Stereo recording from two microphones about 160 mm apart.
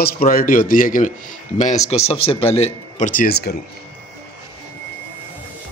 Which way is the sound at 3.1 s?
75° left (ahead or behind).